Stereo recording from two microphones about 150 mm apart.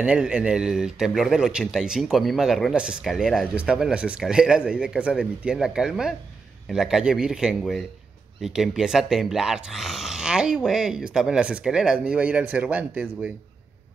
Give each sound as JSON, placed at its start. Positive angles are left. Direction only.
{"t": 0.0, "sound": "speech", "side_deg": -10}